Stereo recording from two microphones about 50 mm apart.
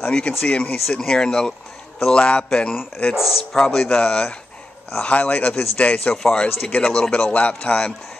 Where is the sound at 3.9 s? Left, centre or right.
Left.